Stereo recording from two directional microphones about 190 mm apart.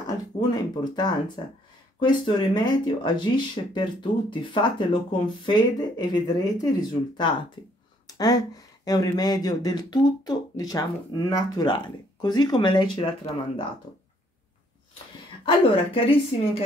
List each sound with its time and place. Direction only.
0.9 s speech: 20° left (ahead or behind)
15.4 s speech: 25° left (ahead or behind)